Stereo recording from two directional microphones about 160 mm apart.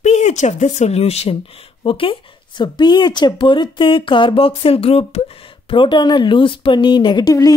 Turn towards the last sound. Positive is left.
turn(degrees=25)  # may be behind; listen again after turning